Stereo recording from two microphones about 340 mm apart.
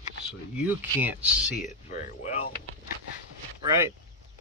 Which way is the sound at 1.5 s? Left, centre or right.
Left.